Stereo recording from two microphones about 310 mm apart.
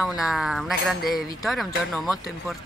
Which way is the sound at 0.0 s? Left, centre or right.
Centre.